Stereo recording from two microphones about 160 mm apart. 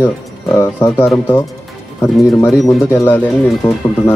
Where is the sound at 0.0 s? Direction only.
15° left (ahead or behind).